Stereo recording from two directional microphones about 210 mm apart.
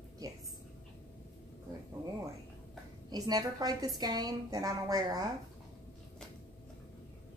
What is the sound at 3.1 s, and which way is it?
A woman's voice, 20° right (ahead or behind).